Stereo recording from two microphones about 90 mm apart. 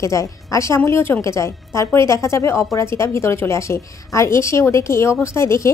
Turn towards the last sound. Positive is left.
turn(degrees=30)  # may be behind; listen again after turning